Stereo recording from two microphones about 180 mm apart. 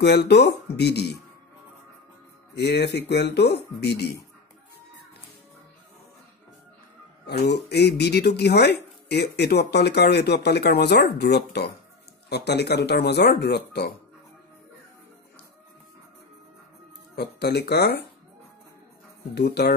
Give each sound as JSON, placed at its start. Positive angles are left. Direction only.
{"t": 0.0, "sound": "speech", "side_deg": 65}
{"t": 2.5, "sound": "speech", "side_deg": 65}
{"t": 7.2, "sound": "speech", "side_deg": 65}
{"t": 17.1, "sound": "speech", "side_deg": 65}
{"t": 19.3, "sound": "speech", "side_deg": 65}